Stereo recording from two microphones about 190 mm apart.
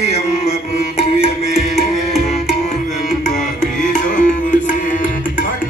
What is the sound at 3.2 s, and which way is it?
Music, 40° left (ahead or behind).